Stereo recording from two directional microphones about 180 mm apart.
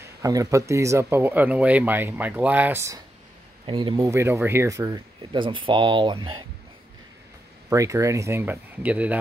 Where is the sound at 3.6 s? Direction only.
25° right (ahead or behind).